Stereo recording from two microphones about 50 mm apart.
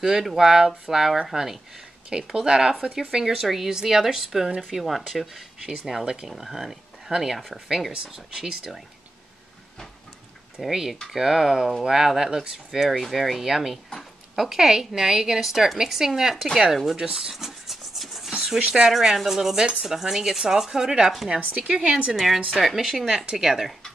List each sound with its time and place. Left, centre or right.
0.0 s a woman's voice: centre
10.6 s a woman's voice: centre
12.8 s a woman's voice: centre
16.9 s rub: centre
18.6 s a woman's voice: centre
22.1 s a woman's voice: centre